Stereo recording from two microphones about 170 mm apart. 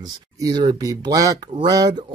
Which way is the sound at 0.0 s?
25° right (ahead or behind).